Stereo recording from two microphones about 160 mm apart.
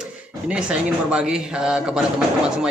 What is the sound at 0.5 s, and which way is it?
A man's voice, 5° right (ahead or behind).